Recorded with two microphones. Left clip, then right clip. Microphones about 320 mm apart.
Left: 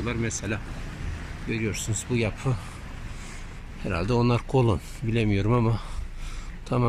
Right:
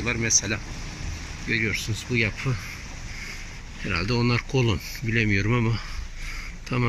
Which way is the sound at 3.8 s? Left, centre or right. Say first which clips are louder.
Even; centre.